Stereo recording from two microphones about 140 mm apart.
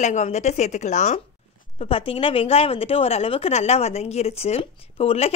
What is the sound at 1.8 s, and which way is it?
A woman's voice, 40° left (ahead or behind).